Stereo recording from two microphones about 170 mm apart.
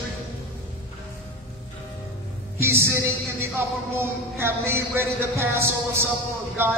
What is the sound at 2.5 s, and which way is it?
A man's voice, 15° right (ahead or behind).